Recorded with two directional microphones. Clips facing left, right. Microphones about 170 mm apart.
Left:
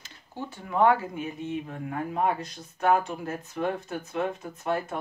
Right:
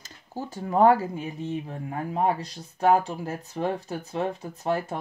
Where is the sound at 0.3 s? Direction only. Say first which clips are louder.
Right 4 dB; 40° right (ahead or behind).